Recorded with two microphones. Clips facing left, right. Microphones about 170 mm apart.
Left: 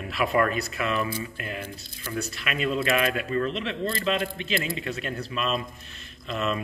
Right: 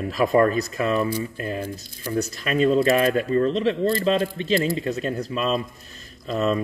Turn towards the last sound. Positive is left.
turn(degrees=-40)  # may be behind; listen again after turning